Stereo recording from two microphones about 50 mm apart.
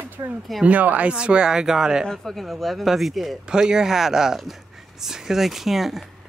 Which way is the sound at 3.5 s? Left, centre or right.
Centre.